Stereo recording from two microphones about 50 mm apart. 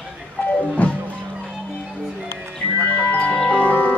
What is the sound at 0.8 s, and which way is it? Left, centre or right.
Music, left.